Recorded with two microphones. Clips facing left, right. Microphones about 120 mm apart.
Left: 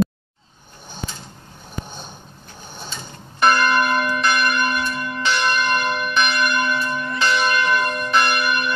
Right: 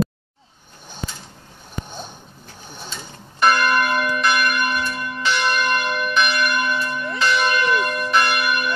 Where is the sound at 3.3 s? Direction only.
Centre (ahead or behind).